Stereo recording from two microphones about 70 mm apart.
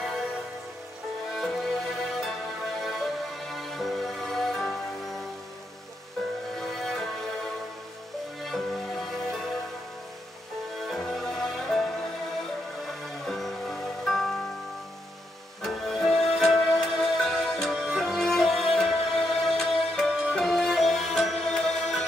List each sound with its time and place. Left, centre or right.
0.0 s music: centre
1.3 s music: centre
6.5 s music: centre
10.8 s music: centre
15.6 s music: centre